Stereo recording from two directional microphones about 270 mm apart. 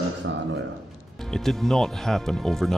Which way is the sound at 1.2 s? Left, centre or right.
Centre.